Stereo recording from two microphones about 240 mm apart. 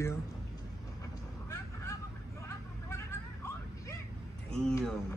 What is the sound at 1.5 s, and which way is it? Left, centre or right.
Vehicle, centre.